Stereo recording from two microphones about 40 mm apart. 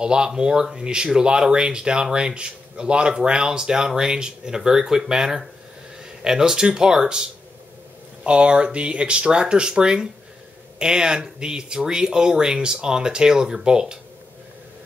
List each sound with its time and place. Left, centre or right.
0.0 s speech: centre
8.3 s speech: right